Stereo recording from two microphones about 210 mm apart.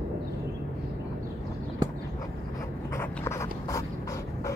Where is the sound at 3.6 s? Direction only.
15° left (ahead or behind).